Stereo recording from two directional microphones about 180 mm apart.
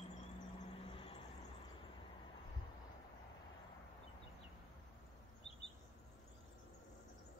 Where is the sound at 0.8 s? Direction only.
30° left (ahead or behind).